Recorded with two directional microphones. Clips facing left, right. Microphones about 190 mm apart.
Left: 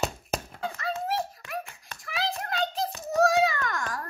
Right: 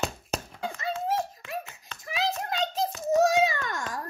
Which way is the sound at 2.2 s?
20° right (ahead or behind).